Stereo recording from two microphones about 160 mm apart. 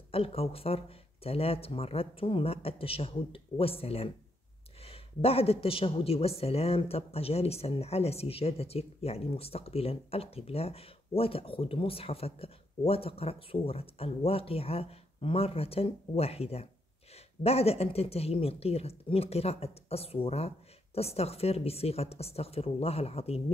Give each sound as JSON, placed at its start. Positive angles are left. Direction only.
{"t": 0.1, "sound": "speech", "side_deg": 35}